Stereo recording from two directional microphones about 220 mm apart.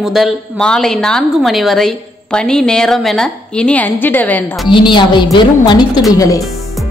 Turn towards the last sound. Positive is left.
turn(degrees=15)  # may be behind; listen again after turning